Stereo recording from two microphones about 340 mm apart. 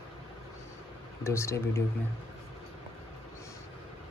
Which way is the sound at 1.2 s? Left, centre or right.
Centre.